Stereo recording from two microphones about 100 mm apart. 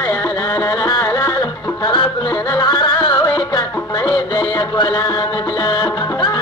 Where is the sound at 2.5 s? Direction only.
40° left (ahead or behind).